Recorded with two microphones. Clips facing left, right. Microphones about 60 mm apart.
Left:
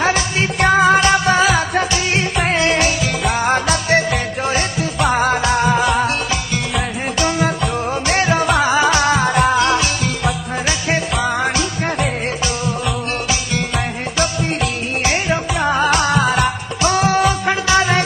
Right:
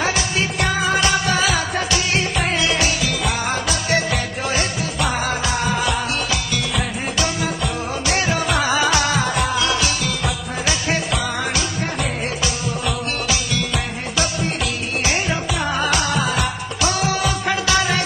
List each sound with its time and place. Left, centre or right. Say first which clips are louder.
0.0 s music: left 4 dB; left
7.3 s music: left 5 dB; left
8.1 s music: left 4 dB; left
15.6 s music: left 6 dB; left
16.1 s music of bollywood: left 5 dB; left
16.8 s music: left 6 dB; left
17.5 s music: left 4 dB; left